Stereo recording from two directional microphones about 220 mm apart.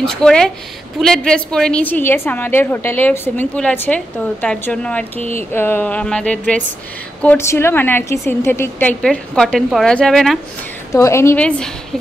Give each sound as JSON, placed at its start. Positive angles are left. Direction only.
{"t": 0.0, "sound": "a woman's voice", "side_deg": 5}
{"t": 10.9, "sound": "a woman's voice", "side_deg": 15}